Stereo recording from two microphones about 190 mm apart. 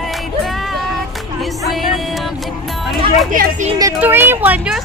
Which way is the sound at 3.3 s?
45° right (ahead or behind).